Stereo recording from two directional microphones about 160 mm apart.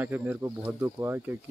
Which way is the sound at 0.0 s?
10° right (ahead or behind).